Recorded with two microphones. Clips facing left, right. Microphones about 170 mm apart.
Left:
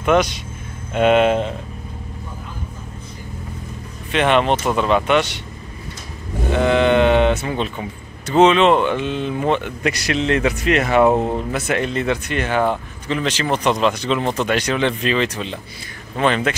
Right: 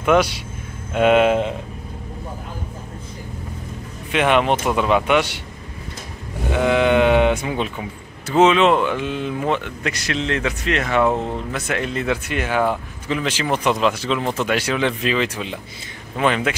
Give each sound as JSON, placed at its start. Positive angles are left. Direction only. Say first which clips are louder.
{"t": 0.0, "sound": "speech", "louder": "even", "side_deg": -5}
{"t": 4.1, "sound": "speech", "louder": "left 1 dB", "side_deg": -10}
{"t": 6.5, "sound": "speech", "louder": "left 1 dB", "side_deg": -10}